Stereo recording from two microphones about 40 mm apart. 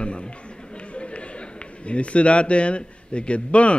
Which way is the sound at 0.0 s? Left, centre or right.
Left.